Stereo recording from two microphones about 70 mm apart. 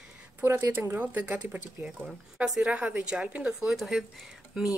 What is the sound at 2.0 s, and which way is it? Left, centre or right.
Speech, centre.